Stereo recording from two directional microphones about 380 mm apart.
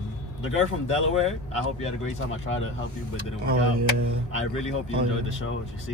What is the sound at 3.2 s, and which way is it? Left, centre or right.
Speech, right.